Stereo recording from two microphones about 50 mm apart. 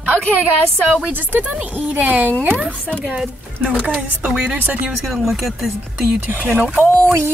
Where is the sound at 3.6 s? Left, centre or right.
Right.